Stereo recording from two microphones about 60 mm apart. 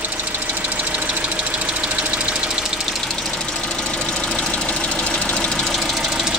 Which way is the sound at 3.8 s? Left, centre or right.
Centre.